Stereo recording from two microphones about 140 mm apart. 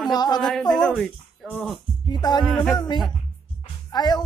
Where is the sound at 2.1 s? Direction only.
30° left (ahead or behind).